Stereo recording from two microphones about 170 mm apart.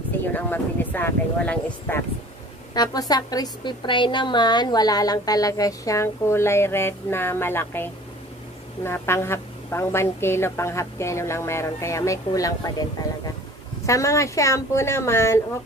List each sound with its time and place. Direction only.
0.3 s a woman's voice: 10° left (ahead or behind)
2.7 s a woman's voice: 25° left (ahead or behind)
13.8 s a woman's voice: 20° left (ahead or behind)